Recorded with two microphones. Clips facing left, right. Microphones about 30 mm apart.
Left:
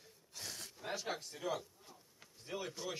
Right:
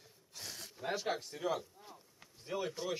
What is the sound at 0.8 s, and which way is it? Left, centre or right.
A man's voice, centre.